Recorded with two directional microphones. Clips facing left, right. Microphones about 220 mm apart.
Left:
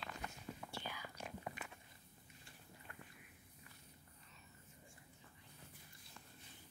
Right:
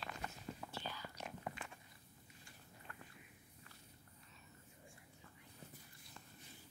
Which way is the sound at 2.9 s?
15° left (ahead or behind).